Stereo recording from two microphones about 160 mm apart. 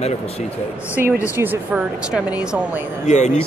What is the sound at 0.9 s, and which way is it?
A woman's voice, 10° right (ahead or behind).